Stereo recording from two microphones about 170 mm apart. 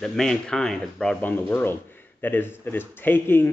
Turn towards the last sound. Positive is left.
turn(degrees=10)  # may be behind; listen again after turning